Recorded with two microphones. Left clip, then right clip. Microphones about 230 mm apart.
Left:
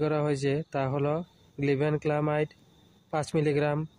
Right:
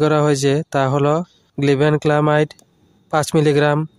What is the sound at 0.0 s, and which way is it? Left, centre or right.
Speech, right.